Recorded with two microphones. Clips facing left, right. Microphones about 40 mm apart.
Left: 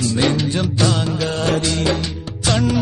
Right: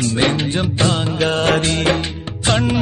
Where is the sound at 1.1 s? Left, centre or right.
Right.